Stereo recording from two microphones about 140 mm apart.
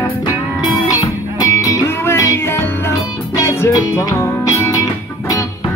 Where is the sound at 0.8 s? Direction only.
25° left (ahead or behind).